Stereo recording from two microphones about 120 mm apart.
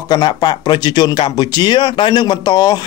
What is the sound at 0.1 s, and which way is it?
Speech, 35° left (ahead or behind).